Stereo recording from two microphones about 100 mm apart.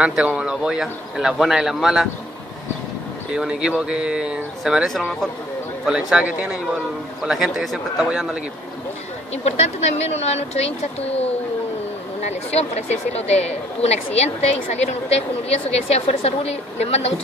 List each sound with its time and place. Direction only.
0.0 s speech: 10° right (ahead or behind)
3.3 s speech: 10° right (ahead or behind)
5.9 s speech: 5° right (ahead or behind)
9.4 s a woman's voice: 90° left
12.4 s a woman's voice: 90° left